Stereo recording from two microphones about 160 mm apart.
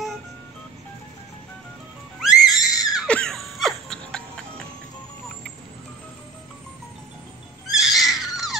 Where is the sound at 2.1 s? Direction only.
Centre (ahead or behind).